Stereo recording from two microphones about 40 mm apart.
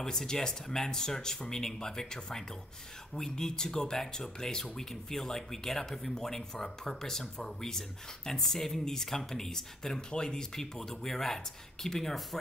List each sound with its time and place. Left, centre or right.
0.0 s speech: centre